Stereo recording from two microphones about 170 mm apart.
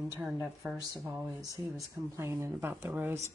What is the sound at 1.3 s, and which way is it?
A woman's voice, 20° right (ahead or behind).